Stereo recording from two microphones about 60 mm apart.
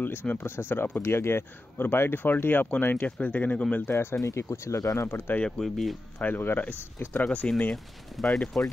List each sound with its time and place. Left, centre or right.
0.0 s speech: left
3.9 s speech: left
4.2 s speech: left
5.0 s speech: left
5.4 s speech: centre
6.1 s speech: left
7.4 s speech: centre